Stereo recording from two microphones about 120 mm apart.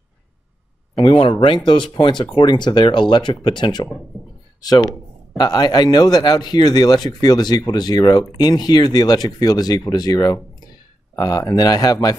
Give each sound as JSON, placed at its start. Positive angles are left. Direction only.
{"t": 1.0, "sound": "speech", "side_deg": 45}